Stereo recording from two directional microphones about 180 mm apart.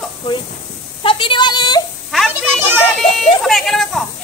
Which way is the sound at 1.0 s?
30° left (ahead or behind).